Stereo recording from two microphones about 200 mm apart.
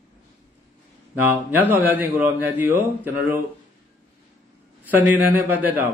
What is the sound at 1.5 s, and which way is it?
A man's voice, 10° right (ahead or behind).